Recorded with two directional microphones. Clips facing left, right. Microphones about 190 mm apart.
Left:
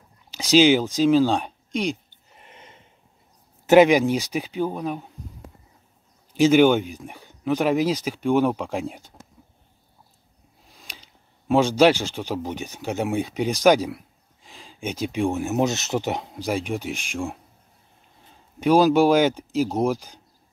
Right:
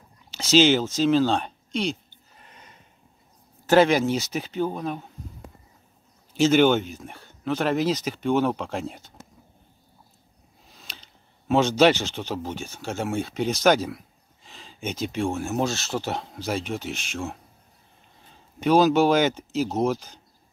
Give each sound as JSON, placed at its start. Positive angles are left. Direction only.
{"t": 0.3, "sound": "a sound", "side_deg": 15}
{"t": 3.6, "sound": "speech", "side_deg": 15}
{"t": 6.3, "sound": "speech", "side_deg": 10}
{"t": 10.7, "sound": "speech", "side_deg": 10}
{"t": 18.6, "sound": "speech", "side_deg": 10}